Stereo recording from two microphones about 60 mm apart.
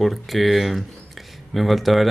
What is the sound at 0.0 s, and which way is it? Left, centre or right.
Speech, centre.